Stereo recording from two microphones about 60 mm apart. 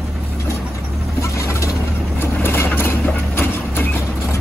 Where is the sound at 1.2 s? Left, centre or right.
Left.